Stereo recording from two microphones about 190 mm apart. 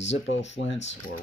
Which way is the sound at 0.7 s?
35° left (ahead or behind).